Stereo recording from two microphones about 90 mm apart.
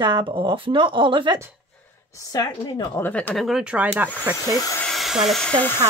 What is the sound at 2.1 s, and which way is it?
Speech, 45° left (ahead or behind).